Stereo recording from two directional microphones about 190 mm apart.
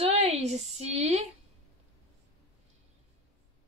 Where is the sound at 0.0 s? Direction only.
35° right (ahead or behind).